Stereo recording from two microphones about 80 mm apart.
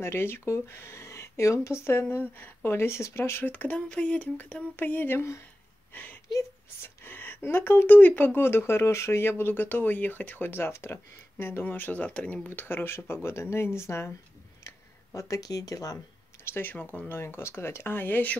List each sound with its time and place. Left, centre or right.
0.0 s speech: left
6.8 s speech: left; by 12.4 s centre
12.4 s speech: left
14.6 s a sound: left
16.5 s speech: left
17.1 s speech: left